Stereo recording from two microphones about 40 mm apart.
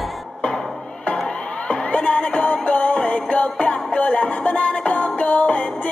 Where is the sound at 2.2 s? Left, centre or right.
Left.